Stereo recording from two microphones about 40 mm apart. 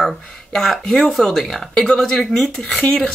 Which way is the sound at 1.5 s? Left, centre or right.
Centre.